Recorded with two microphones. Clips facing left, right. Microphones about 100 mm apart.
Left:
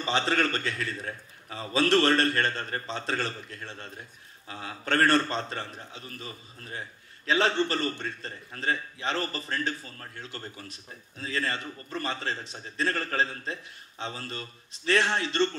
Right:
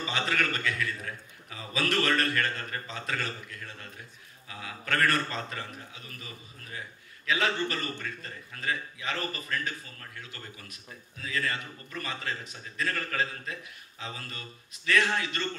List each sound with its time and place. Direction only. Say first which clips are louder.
0.0 s a man's voice: left 4 dB; 30° left (ahead or behind)